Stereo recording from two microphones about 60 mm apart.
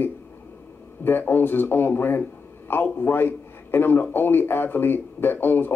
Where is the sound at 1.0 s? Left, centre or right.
Left.